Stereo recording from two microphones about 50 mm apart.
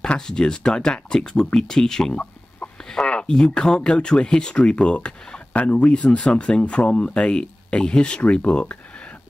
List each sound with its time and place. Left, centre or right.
0.0 s speech: centre
2.9 s a sound: left
3.3 s speech: centre